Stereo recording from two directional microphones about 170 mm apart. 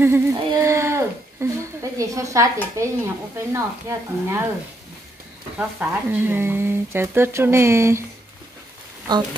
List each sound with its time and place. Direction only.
0.0 s a sound: 15° right (ahead or behind)
3.3 s speech: 15° right (ahead or behind)
5.6 s speech: 10° right (ahead or behind)